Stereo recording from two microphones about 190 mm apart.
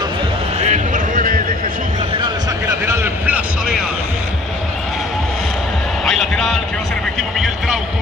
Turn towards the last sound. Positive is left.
turn(degrees=0)  # may be behind; listen again after turning